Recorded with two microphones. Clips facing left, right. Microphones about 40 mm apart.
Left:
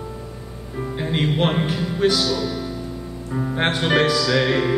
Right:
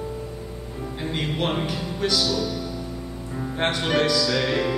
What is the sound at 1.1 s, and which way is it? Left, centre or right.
Music, left.